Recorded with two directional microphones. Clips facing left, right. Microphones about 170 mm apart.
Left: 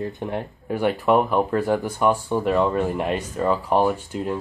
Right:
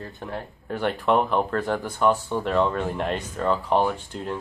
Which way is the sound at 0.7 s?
10° left (ahead or behind).